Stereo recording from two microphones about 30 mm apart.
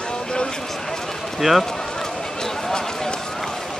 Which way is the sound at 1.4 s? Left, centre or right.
Centre.